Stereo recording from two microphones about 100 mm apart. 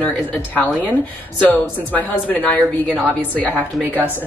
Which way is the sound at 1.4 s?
15° left (ahead or behind).